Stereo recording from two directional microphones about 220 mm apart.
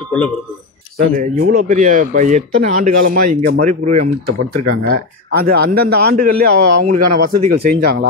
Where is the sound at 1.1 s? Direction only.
35° right (ahead or behind).